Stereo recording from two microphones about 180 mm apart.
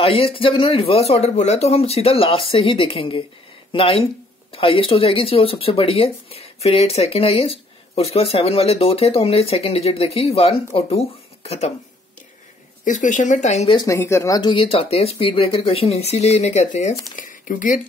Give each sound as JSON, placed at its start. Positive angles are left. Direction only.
{"t": 0.0, "sound": "speech", "side_deg": 30}
{"t": 12.8, "sound": "speech", "side_deg": 45}
{"t": 13.7, "sound": "speech", "side_deg": 15}